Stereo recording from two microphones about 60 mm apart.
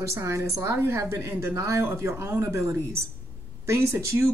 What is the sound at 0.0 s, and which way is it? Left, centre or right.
Speech, right.